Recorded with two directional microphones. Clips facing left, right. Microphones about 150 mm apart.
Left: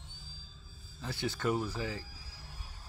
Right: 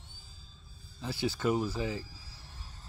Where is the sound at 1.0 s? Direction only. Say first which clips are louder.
Right 3 dB; 5° right (ahead or behind).